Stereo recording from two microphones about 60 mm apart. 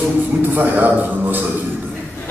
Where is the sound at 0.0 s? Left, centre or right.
Right.